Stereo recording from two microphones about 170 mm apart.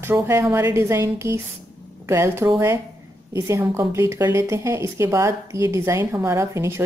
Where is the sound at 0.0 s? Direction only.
15° right (ahead or behind).